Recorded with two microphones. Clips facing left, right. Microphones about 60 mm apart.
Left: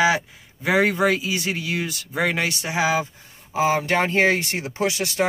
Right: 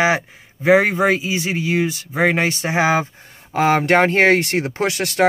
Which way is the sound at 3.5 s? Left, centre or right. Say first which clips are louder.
Right 5 dB; right.